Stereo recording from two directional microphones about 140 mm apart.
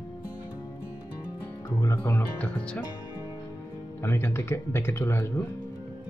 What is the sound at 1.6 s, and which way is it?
Speech, 20° left (ahead or behind).